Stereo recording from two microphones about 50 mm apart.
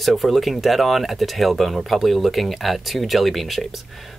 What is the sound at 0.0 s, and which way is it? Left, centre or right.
Speech, centre.